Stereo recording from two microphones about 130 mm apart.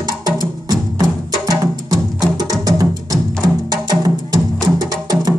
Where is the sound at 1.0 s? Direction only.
30° right (ahead or behind).